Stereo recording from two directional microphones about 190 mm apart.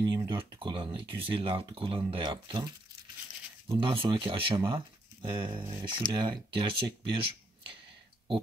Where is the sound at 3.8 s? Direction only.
30° right (ahead or behind).